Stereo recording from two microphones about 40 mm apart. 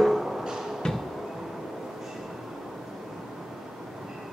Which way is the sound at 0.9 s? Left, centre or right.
Centre.